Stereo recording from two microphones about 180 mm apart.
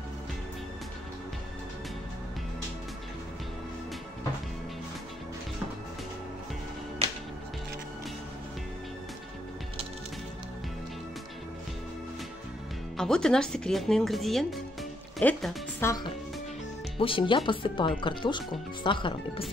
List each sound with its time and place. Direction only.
12.9 s speech: 5° left (ahead or behind)
15.8 s speech: 20° left (ahead or behind)
17.0 s speech: 30° left (ahead or behind)